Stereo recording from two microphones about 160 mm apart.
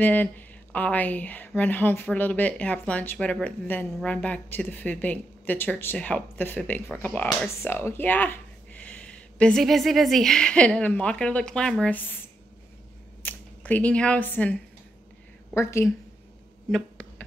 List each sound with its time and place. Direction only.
0.0 s speech: 10° left (ahead or behind)
13.2 s speech: 10° left (ahead or behind)
16.7 s a sound: 5° left (ahead or behind)